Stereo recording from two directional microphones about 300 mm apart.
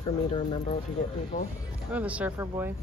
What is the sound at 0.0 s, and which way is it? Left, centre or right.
Speech, centre.